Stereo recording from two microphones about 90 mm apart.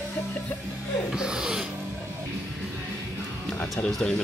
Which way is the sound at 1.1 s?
5° right (ahead or behind).